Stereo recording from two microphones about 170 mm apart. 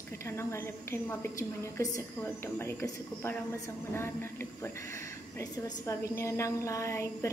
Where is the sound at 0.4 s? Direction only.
15° left (ahead or behind).